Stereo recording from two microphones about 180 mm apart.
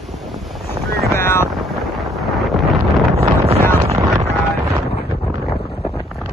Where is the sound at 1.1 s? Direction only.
15° left (ahead or behind).